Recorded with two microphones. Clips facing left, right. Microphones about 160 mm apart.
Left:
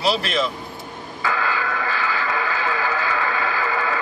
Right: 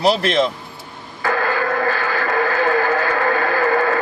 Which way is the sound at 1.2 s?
50° right (ahead or behind).